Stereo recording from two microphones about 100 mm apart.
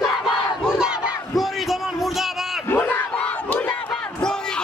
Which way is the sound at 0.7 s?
10° right (ahead or behind).